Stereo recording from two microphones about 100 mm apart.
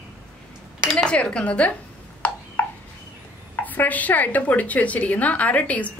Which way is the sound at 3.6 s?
15° left (ahead or behind).